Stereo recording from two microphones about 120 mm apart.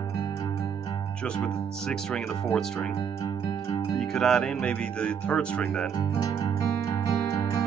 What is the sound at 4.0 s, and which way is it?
Speech, 5° left (ahead or behind).